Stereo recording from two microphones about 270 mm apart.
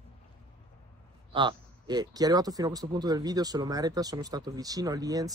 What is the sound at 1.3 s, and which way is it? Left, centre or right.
A man's voice, centre.